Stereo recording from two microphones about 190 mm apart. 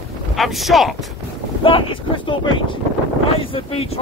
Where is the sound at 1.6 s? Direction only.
25° left (ahead or behind).